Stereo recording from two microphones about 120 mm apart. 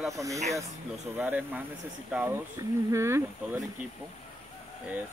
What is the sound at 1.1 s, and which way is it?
Speech, 15° right (ahead or behind).